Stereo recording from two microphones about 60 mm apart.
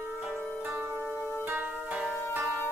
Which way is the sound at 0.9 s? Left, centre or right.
Left.